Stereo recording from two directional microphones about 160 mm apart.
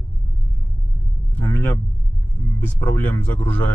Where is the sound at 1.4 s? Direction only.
15° left (ahead or behind).